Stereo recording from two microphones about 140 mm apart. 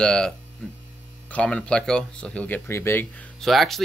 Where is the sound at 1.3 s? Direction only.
5° left (ahead or behind).